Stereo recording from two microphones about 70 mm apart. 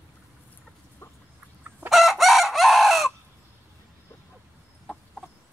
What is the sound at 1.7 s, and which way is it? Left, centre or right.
Chicken, centre.